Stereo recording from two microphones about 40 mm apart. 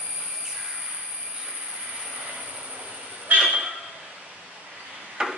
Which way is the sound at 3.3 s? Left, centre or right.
Right.